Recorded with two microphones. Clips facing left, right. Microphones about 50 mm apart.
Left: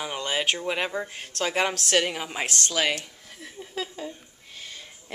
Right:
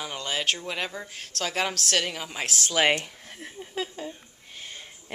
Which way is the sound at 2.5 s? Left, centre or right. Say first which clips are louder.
Right 3 dB; centre.